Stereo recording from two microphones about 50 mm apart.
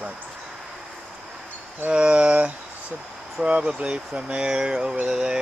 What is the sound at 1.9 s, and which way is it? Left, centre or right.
Speech, right.